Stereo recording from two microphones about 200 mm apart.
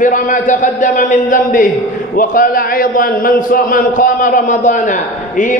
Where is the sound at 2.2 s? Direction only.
45° left (ahead or behind).